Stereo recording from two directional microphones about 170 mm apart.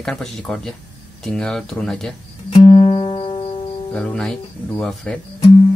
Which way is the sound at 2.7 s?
30° left (ahead or behind).